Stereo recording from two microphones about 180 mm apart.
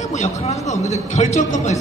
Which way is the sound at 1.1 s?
40° left (ahead or behind).